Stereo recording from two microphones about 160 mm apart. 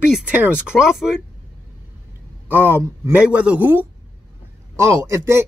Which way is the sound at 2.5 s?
15° right (ahead or behind).